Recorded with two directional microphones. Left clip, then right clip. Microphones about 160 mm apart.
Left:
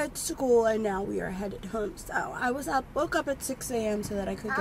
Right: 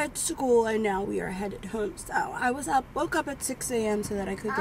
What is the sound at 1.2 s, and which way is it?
Speech, 20° right (ahead or behind).